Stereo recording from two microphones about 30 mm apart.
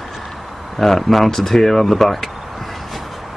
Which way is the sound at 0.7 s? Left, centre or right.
Centre.